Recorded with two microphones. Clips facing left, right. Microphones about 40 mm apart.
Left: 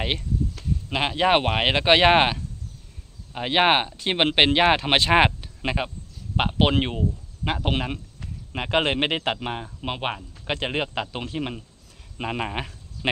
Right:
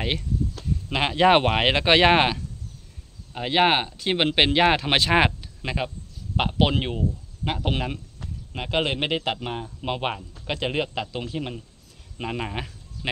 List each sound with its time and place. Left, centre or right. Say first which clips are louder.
0.8 s speech: right 3 dB; centre
3.3 s speech: left 1 dB; left
8.5 s speech: left 3 dB; left
9.3 s speech: left 1 dB; left
10.4 s speech: even; left
11.3 s speech: left 1 dB; left